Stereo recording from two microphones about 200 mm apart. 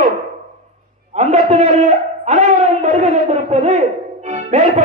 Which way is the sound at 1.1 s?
35° right (ahead or behind).